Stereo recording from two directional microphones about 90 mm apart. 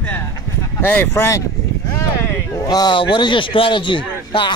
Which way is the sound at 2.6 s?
50° left (ahead or behind).